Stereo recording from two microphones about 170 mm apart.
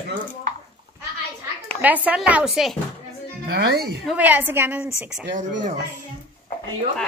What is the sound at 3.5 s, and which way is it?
Speech, 70° right (ahead or behind).